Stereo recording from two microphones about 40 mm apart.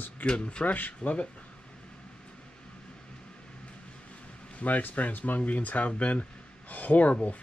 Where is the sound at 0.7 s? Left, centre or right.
Left.